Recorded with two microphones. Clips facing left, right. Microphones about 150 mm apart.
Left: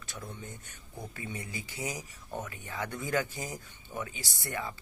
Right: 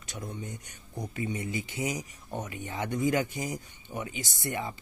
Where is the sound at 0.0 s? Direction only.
20° right (ahead or behind).